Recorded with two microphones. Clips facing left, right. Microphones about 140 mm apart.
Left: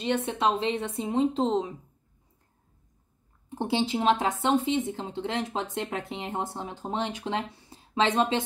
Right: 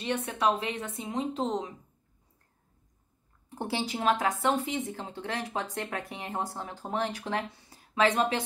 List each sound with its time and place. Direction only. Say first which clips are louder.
0.0 s speech: left 2 dB; 25° left (ahead or behind)
3.4 s speech: left 5 dB; 20° left (ahead or behind)